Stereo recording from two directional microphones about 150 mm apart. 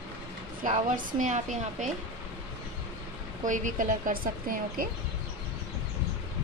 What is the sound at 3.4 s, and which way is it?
A woman's voice, 60° right (ahead or behind).